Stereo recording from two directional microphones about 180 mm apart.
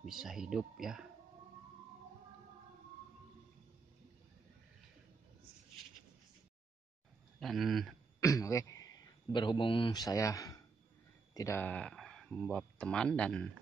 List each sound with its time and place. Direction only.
0.0 s speech: centre (ahead or behind)
7.3 s speech: centre (ahead or behind)
8.2 s speech: 15° left (ahead or behind)